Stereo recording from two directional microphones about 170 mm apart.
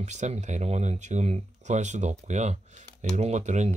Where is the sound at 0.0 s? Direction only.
45° right (ahead or behind).